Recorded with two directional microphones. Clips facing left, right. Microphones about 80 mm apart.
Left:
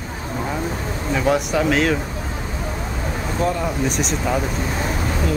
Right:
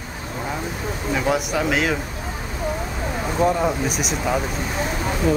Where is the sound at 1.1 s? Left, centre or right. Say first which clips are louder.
Left 3 dB; centre.